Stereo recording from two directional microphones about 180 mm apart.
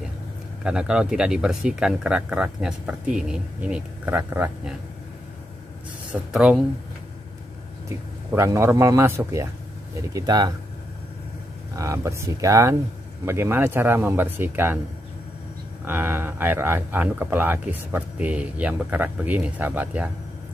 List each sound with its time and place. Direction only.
0.7 s speech: 5° right (ahead or behind)
6.3 s speech: 5° right (ahead or behind)
8.3 s speech: 15° right (ahead or behind)
11.7 s speech: 15° right (ahead or behind)
15.8 s speech: 10° right (ahead or behind)